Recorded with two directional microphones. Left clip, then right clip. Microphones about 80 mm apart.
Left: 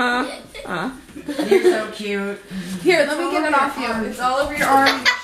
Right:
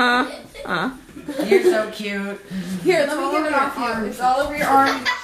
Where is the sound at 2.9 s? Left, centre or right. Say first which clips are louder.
Left 2 dB; left.